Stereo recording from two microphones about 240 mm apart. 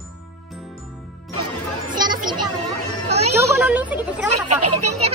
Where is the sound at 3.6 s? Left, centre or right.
Centre.